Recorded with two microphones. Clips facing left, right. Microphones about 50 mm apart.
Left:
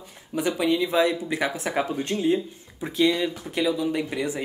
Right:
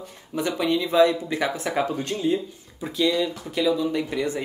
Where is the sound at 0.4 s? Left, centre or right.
Centre.